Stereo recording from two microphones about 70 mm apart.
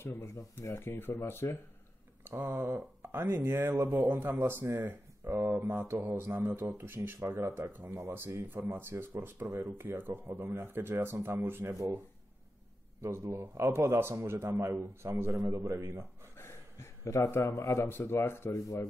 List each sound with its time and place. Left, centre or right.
0.0 s speech: left
2.2 s a man's voice: right
9.5 s a man's voice: right
9.8 s a man's voice: right
11.7 s speech: right
13.0 s a man's voice: right
16.3 s a sound: left
17.4 s speech: left
18.5 s speech: left